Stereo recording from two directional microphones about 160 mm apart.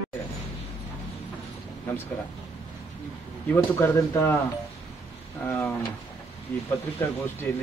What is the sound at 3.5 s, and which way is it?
Speech, 15° left (ahead or behind).